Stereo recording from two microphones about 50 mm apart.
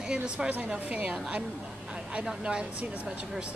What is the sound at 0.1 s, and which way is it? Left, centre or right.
A woman's voice, centre.